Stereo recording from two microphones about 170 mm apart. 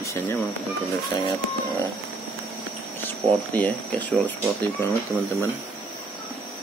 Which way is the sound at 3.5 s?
10° left (ahead or behind).